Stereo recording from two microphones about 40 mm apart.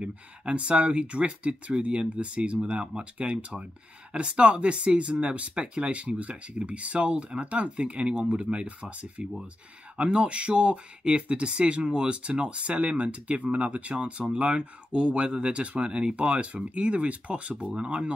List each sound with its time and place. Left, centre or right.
0.0 s speech: right